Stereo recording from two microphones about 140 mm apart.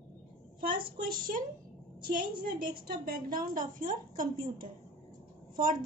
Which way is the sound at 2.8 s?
80° right.